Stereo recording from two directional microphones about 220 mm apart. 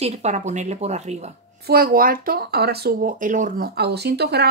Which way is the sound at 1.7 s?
40° right (ahead or behind).